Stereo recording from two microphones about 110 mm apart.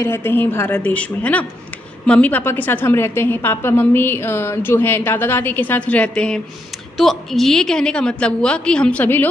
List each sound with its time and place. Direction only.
0.0 s a woman's voice: 20° left (ahead or behind)